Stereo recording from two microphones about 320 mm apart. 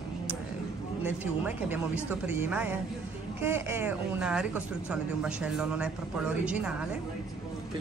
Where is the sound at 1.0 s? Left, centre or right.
Centre.